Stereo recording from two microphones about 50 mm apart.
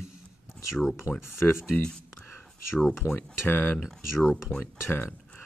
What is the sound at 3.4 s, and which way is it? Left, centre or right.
Speech, left.